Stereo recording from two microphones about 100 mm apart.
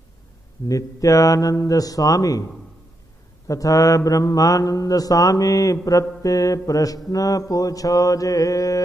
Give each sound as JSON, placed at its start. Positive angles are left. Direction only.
{"t": 0.7, "sound": "mantra", "side_deg": 35}
{"t": 3.4, "sound": "mantra", "side_deg": 35}